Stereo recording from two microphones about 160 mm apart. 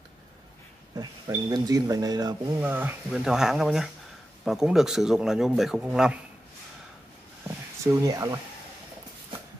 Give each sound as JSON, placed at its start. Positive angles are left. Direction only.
{"t": 0.9, "sound": "speech", "side_deg": -25}
{"t": 2.6, "sound": "speech", "side_deg": -10}
{"t": 7.4, "sound": "a sound", "side_deg": -20}